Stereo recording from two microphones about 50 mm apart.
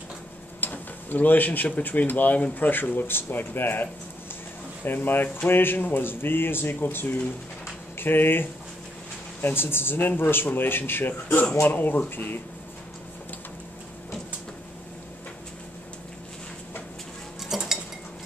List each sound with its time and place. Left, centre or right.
0.6 s speech: left
17.5 s cutlery: centre